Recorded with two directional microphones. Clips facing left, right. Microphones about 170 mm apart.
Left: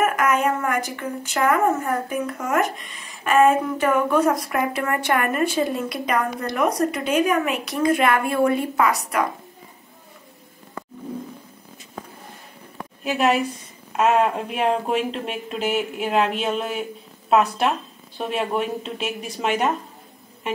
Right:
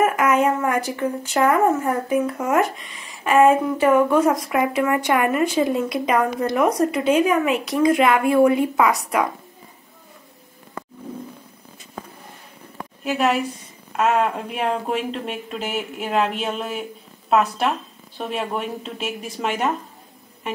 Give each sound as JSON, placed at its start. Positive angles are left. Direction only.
{"t": 0.0, "sound": "a sound", "side_deg": -25}
{"t": 0.7, "sound": "speech", "side_deg": -35}
{"t": 3.3, "sound": "a woman's voice", "side_deg": -20}
{"t": 13.0, "sound": "speech", "side_deg": 0}